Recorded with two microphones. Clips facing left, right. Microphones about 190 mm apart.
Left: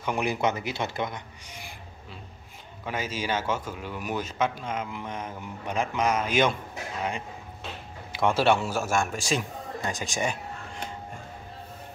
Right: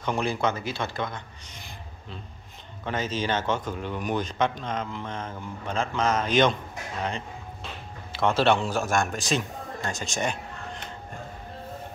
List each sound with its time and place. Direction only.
0.0 s speech: 15° left (ahead or behind)
2.8 s a man's voice: 10° left (ahead or behind)
8.1 s a man's voice: 10° left (ahead or behind)